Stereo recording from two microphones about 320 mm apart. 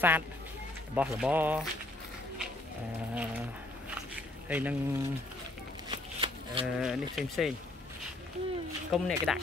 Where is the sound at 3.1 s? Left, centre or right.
Centre.